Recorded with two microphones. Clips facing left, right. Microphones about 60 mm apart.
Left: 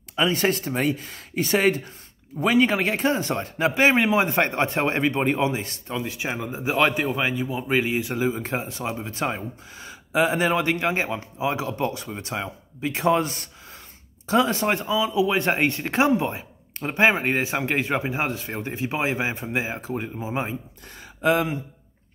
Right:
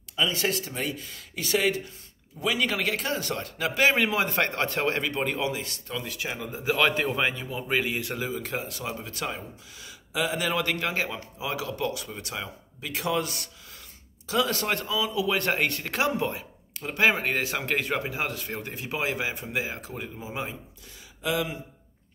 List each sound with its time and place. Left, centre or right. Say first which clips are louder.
0.1 s speech: left 5 dB; left
2.6 s speech: left 6 dB; left
6.9 s a man's voice: left 2 dB; centre
8.3 s speech: left 5 dB; left
20.9 s speech: left 8 dB; left